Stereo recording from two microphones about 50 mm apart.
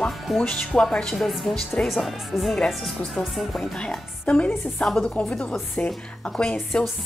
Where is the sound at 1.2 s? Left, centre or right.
Centre.